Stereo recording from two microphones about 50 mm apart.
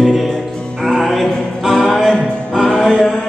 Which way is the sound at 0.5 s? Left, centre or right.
Centre.